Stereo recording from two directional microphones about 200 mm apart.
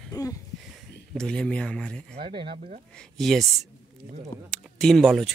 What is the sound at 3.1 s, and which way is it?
Speech, centre (ahead or behind).